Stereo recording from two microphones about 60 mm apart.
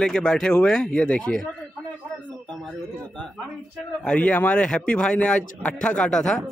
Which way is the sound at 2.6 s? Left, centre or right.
Centre.